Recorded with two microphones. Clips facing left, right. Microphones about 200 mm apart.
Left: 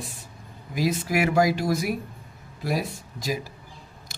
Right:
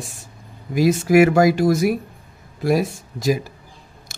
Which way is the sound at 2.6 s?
80° right.